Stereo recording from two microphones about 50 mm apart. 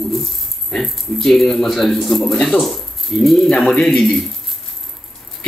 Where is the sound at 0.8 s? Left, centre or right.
Centre.